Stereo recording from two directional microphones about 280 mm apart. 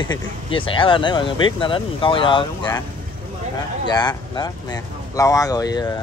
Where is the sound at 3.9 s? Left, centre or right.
Centre.